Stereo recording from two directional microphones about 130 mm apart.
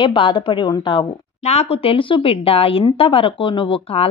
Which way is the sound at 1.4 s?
55° left (ahead or behind).